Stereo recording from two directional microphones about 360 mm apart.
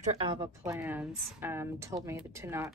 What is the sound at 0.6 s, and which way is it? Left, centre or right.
Speech, centre.